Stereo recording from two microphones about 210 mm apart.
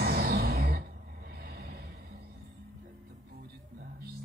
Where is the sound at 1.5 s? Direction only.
50° right (ahead or behind).